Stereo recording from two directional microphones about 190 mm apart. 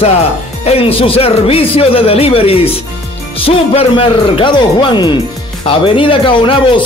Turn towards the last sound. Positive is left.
turn(degrees=25)  # may be behind; listen again after turning